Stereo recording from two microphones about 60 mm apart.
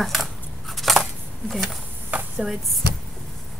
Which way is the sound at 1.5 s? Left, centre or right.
Centre.